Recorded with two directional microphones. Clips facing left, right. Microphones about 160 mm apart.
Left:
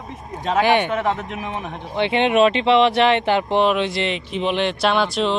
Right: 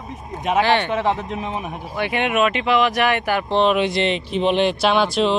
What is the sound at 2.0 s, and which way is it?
Speech, 25° left (ahead or behind).